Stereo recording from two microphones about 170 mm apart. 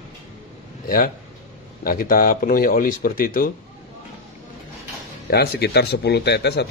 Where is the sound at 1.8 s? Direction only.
55° left (ahead or behind).